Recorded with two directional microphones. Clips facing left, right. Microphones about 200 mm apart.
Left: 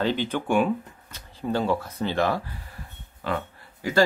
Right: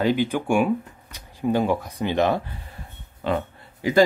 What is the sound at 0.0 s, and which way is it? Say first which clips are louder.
Speech: right 4 dB; 10° right (ahead or behind).